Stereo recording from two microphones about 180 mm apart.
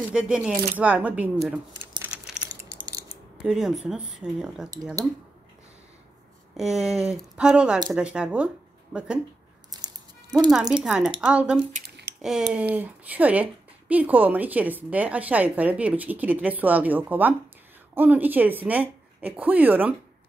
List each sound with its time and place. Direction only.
0.1 s a woman's voice: 5° right (ahead or behind)
2.0 s a sound: 5° right (ahead or behind)
2.8 s a sound: 20° right (ahead or behind)
3.4 s speech: 5° right (ahead or behind)
6.5 s speech: 5° right (ahead or behind)
9.7 s music: 20° right (ahead or behind)
10.7 s speech: 5° right (ahead or behind)
11.8 s a sound: 65° right (ahead or behind)
12.2 s a woman's voice: 5° right (ahead or behind)